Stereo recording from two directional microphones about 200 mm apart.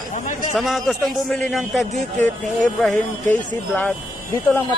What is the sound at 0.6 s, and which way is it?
A man's voice, centre (ahead or behind).